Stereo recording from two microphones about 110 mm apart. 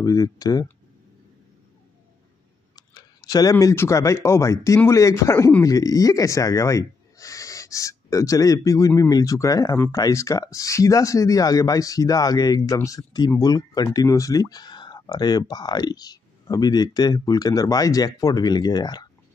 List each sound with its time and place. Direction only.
0.0 s speech: 35° left (ahead or behind)
2.7 s speech: 35° left (ahead or behind)